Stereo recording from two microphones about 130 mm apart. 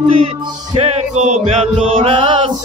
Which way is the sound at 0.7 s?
55° right (ahead or behind).